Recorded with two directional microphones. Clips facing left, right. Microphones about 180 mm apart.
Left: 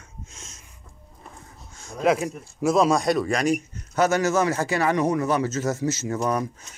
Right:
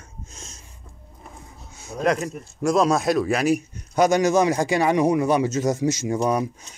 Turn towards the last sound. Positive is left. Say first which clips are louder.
# right 3 dB
turn(degrees=-15)  # may be behind; listen again after turning